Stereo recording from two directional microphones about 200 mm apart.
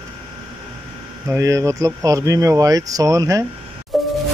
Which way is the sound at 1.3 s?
15° right (ahead or behind).